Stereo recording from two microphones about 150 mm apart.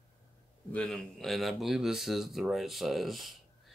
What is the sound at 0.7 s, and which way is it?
Speech, 5° left (ahead or behind).